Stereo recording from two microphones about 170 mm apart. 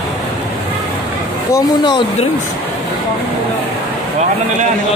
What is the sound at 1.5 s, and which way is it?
Speech, 25° left (ahead or behind).